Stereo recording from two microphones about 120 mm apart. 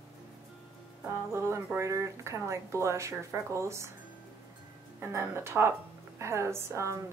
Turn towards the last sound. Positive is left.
turn(degrees=-25)  # may be behind; listen again after turning